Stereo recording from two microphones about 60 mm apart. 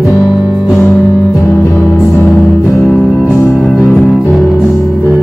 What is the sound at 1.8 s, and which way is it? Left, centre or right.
Music, left.